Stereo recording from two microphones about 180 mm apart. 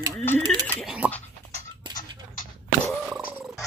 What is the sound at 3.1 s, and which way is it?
Purr, 5° right (ahead or behind).